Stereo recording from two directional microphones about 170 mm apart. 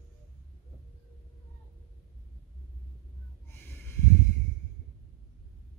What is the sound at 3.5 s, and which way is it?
Snort, 10° left (ahead or behind).